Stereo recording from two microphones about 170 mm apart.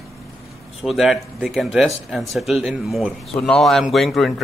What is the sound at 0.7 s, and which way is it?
Speech, centre (ahead or behind).